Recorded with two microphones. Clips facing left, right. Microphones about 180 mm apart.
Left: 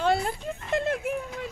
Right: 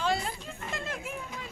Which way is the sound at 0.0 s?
55° left (ahead or behind).